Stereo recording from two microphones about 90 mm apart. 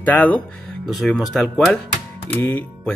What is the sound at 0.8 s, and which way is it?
Speech, centre (ahead or behind).